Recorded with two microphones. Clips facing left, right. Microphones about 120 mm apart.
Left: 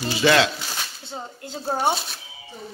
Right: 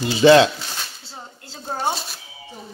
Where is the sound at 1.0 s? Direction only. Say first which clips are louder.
Left 5 dB; 20° left (ahead or behind).